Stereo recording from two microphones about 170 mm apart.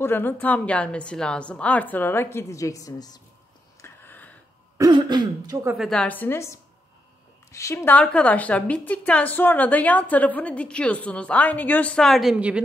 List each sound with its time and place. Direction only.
0.0 s a woman's voice: 10° left (ahead or behind)
3.8 s a sound: 10° left (ahead or behind)
4.7 s speech: 25° right (ahead or behind)
5.8 s a woman's voice: 5° left (ahead or behind)